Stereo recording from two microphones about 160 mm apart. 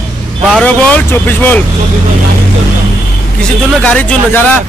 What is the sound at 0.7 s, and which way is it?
Speech, 10° left (ahead or behind).